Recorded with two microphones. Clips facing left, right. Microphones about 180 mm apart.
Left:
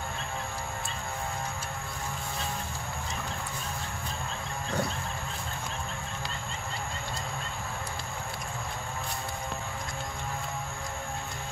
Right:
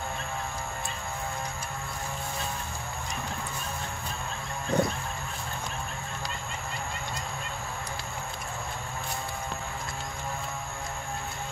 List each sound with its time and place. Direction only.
4.7 s bird: 20° right (ahead or behind)